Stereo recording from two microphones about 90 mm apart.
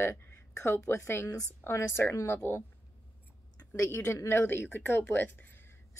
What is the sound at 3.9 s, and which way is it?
A woman's voice, 30° left (ahead or behind).